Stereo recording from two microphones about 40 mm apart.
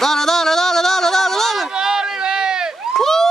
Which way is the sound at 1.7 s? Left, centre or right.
Centre.